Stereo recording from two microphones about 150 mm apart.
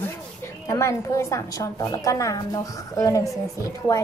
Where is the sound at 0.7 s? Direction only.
20° left (ahead or behind).